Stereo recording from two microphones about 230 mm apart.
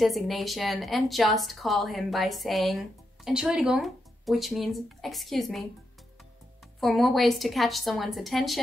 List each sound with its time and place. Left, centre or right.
0.0 s a woman's voice: centre
6.8 s a woman's voice: centre